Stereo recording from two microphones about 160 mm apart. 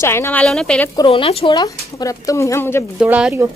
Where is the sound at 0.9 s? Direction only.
30° left (ahead or behind); by 2.8 s 15° left (ahead or behind).